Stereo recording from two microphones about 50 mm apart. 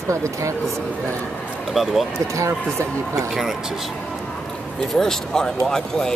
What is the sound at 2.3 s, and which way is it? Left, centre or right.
Speech, right.